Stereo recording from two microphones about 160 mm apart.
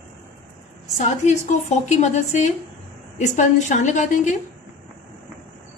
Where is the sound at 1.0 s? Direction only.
50° left (ahead or behind).